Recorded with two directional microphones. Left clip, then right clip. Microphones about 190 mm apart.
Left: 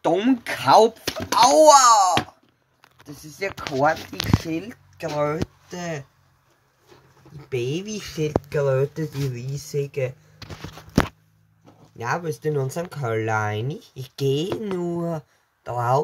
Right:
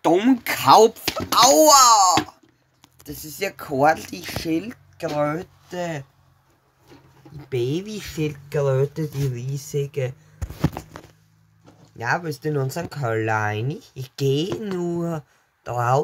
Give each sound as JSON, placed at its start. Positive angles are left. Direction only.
{"t": 0.0, "sound": "speech", "side_deg": -5}
{"t": 3.1, "sound": "speech", "side_deg": -20}
{"t": 7.3, "sound": "speech", "side_deg": -15}
{"t": 11.6, "sound": "speech", "side_deg": -5}